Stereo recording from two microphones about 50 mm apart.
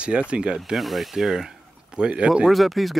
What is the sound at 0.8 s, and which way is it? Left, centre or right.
Speech, centre.